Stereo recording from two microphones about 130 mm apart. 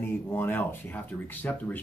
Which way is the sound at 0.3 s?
15° left (ahead or behind).